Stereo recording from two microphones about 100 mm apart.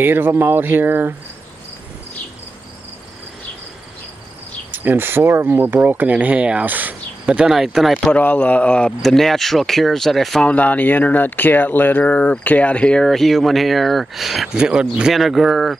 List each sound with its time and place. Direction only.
0.0 s speech: 20° right (ahead or behind)
4.7 s speech: 20° right (ahead or behind); by 8.1 s centre (ahead or behind)
8.1 s a man's voice: 15° left (ahead or behind)
10.5 s a man's voice: 15° left (ahead or behind); by 15.8 s centre (ahead or behind)